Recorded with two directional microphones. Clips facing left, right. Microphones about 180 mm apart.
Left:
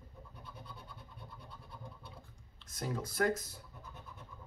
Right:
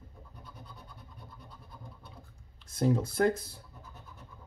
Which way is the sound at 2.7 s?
30° right (ahead or behind).